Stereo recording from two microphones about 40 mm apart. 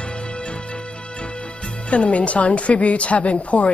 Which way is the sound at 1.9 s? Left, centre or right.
Left.